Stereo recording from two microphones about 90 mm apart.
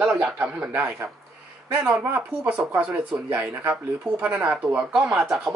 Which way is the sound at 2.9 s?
30° right (ahead or behind).